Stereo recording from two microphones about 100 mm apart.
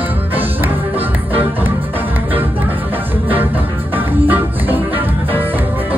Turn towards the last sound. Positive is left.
turn(degrees=-20)  # may be behind; listen again after turning